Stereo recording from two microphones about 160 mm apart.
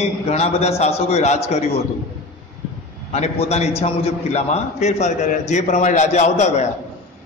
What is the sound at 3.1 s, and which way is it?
A man's voice, 40° left (ahead or behind).